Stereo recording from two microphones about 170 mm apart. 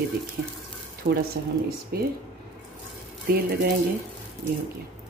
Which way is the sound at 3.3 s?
60° right (ahead or behind).